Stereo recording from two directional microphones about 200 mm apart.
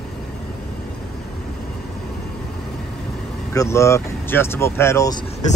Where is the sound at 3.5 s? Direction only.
15° left (ahead or behind).